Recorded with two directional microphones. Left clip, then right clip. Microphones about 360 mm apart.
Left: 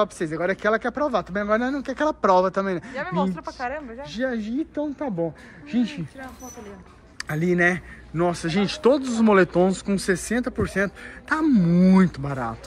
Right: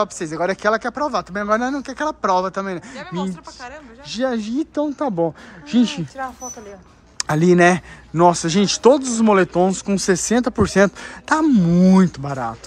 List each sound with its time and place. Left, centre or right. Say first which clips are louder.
0.0 s speech: right 3 dB; centre
3.0 s speech: left 6 dB; centre
4.1 s speech: right 6 dB; centre